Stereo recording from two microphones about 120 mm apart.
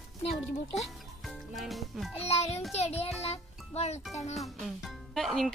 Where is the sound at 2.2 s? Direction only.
60° left (ahead or behind).